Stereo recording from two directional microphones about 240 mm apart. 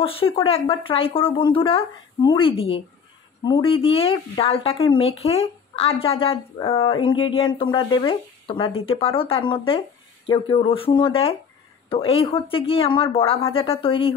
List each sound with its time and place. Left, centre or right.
0.0 s speech: left